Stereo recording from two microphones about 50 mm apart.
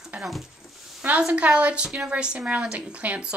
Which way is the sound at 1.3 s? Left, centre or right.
Right.